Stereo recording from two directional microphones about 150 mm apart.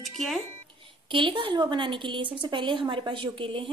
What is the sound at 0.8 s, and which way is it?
A woman's voice, 35° right (ahead or behind).